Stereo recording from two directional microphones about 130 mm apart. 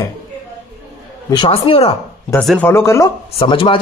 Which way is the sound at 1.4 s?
45° left (ahead or behind).